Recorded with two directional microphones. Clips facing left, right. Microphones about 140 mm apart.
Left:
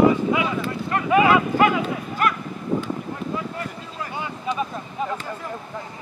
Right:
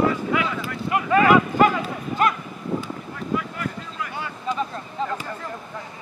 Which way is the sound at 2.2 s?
20° right (ahead or behind).